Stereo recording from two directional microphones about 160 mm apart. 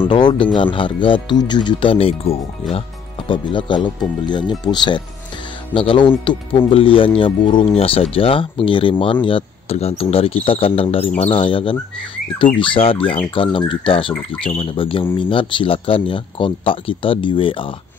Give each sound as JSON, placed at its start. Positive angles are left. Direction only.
{"t": 0.1, "sound": "speech", "side_deg": 30}